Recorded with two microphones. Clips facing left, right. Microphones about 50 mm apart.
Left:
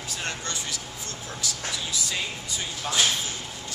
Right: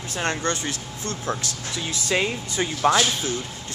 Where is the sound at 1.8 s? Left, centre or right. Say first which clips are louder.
Right 11 dB; right.